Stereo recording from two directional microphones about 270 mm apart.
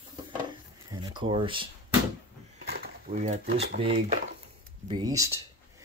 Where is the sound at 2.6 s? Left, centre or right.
Right.